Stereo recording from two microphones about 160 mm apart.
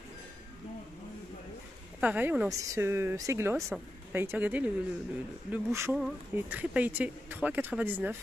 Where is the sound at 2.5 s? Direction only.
20° right (ahead or behind).